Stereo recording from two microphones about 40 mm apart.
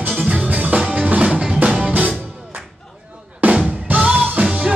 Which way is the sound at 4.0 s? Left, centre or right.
Right.